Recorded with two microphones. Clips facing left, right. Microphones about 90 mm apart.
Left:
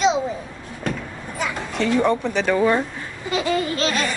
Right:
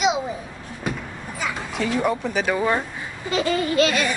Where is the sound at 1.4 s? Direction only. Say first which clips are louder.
Left 2 dB; 5° right (ahead or behind).